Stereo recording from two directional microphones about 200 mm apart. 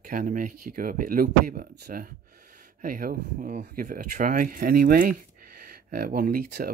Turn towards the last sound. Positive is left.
turn(degrees=-45)  # may be behind; listen again after turning